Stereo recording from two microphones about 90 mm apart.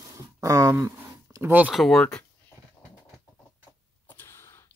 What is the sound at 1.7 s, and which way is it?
Speech, centre (ahead or behind).